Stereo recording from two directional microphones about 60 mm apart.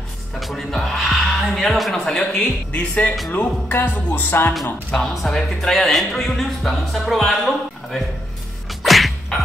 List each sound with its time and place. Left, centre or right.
0.4 s speech: centre
2.7 s speech: left
3.3 s music: left
5.1 s speech: centre
8.6 s sneeze: centre